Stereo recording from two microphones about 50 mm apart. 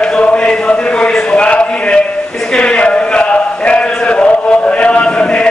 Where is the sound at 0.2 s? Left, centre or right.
Left.